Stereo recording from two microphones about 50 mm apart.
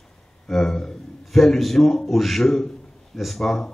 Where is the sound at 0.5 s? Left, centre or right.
Centre.